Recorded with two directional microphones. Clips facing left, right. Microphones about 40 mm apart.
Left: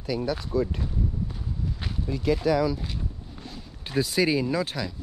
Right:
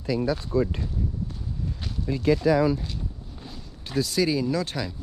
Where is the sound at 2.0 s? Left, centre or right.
Right.